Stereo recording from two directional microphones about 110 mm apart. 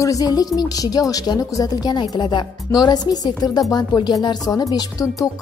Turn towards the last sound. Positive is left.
turn(degrees=30)  # may be behind; listen again after turning